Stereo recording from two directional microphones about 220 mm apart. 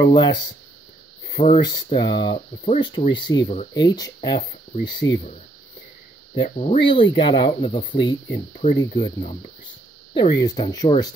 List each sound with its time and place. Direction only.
0.0 s speech: 20° left (ahead or behind)
2.6 s speech: 30° left (ahead or behind)
2.9 s speech: 20° left (ahead or behind)
6.4 s speech: 30° left (ahead or behind)
10.3 s speech: 15° left (ahead or behind)